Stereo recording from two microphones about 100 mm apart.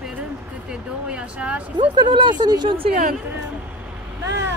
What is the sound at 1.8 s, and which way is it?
Speech, 50° right (ahead or behind).